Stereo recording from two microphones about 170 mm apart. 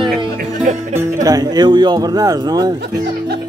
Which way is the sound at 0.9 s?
20° right (ahead or behind).